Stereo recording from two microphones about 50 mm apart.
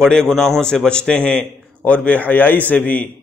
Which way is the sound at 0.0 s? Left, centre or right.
Centre.